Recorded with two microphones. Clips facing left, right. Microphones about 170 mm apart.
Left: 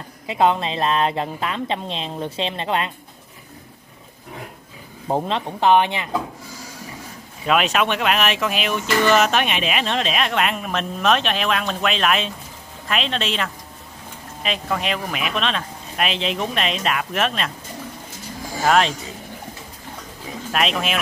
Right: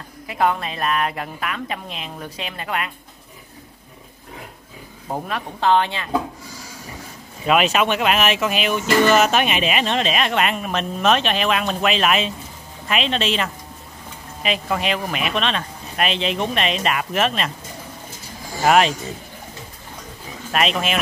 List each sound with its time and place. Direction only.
0.3 s a woman's voice: 25° left (ahead or behind)
5.0 s a woman's voice: 25° left (ahead or behind)
7.4 s speech: centre (ahead or behind)
18.7 s speech: 5° right (ahead or behind)
20.5 s speech: centre (ahead or behind)